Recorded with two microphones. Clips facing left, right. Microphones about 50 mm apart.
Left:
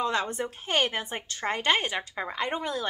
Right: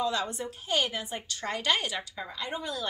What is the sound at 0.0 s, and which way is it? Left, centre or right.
Speech, left.